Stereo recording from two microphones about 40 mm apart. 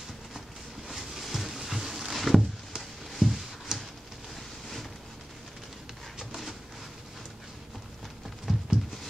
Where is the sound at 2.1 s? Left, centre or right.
Centre.